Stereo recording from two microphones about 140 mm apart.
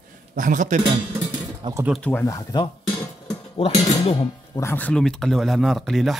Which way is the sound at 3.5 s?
45° left (ahead or behind).